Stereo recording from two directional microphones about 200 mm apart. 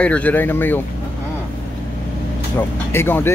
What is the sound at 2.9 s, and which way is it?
Speech, 10° left (ahead or behind).